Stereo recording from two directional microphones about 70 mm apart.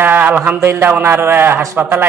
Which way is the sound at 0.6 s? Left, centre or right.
Right.